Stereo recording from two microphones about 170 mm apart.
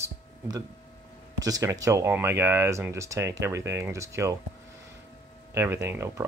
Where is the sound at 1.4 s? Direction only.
20° right (ahead or behind).